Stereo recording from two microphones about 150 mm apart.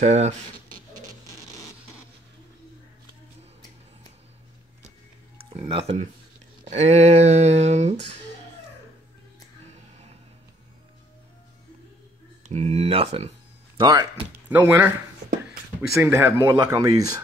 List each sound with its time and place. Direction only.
0.0 s speech: 50° right (ahead or behind)
5.5 s speech: 40° right (ahead or behind)
9.7 s a sound: 45° right (ahead or behind)
12.4 s speech: 45° right (ahead or behind)
13.7 s speech: 30° right (ahead or behind)
14.5 s speech: 15° right (ahead or behind)
16.0 s speech: 15° right (ahead or behind)